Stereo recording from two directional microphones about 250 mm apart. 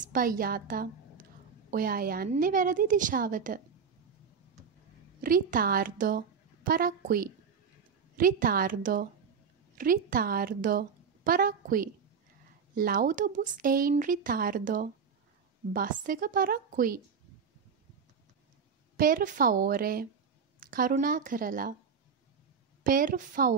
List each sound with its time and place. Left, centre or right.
0.0 s speech: right
5.2 s a woman's voice: right
18.9 s speech: right
22.8 s speech: right